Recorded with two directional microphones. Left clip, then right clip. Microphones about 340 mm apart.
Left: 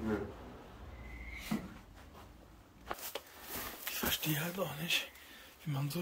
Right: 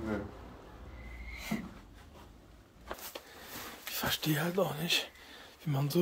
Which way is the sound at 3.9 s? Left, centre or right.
Centre.